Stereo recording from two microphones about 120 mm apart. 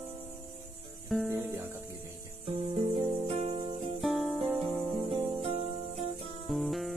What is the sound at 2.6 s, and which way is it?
Music, 55° right (ahead or behind).